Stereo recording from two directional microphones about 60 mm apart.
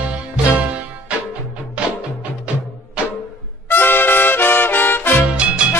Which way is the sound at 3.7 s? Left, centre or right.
Left.